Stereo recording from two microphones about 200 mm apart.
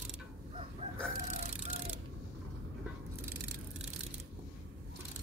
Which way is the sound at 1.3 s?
35° right (ahead or behind).